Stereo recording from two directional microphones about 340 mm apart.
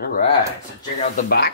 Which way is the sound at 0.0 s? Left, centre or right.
Left.